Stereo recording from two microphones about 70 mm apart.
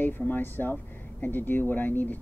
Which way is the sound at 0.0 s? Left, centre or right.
Left.